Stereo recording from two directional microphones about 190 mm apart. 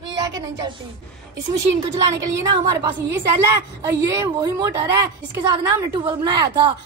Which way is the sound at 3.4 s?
15° right (ahead or behind).